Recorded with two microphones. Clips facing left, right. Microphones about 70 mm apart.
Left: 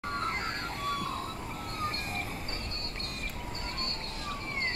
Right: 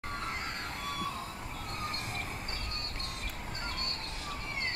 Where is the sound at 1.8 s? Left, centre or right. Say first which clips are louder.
Left 4 dB; centre.